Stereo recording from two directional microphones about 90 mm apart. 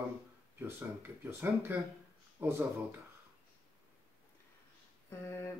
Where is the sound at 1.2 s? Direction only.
25° right (ahead or behind).